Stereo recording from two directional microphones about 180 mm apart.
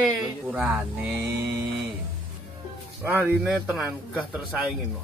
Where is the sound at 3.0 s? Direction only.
10° right (ahead or behind).